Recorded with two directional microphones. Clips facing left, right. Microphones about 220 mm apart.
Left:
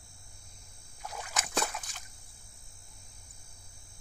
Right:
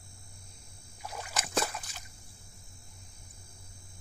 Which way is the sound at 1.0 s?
5° right (ahead or behind).